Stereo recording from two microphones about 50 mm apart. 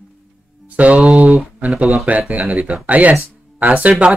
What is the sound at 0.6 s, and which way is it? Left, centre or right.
Speech, right.